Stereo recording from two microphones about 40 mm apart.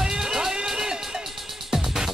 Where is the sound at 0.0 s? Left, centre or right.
Centre.